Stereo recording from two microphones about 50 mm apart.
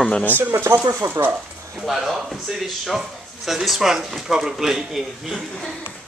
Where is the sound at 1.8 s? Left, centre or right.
Centre.